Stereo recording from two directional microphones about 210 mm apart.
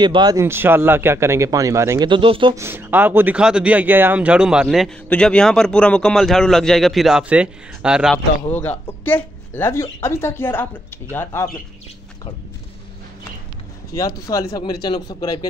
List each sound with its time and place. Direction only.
0.0 s a man's voice: 20° right (ahead or behind)
2.5 s speech: 10° right (ahead or behind)
8.5 s speech: 10° left (ahead or behind)
14.2 s speech: 15° left (ahead or behind)